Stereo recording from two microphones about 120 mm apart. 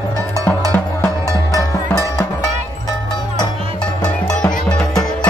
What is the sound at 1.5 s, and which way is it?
Music, 30° left (ahead or behind).